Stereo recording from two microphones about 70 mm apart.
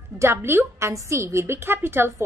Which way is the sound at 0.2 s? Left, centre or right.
Right.